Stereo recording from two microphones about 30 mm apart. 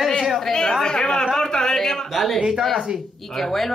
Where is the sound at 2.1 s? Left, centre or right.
Centre.